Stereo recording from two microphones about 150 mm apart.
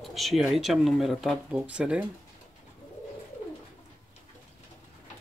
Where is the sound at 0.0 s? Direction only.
Centre (ahead or behind).